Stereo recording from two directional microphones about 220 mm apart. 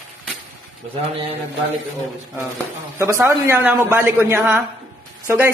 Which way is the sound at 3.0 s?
10° right (ahead or behind).